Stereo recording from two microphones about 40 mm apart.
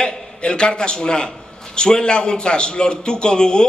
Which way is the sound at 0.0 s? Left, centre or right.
Left.